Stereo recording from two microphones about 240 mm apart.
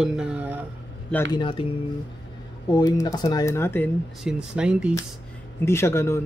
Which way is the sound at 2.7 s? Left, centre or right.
Centre.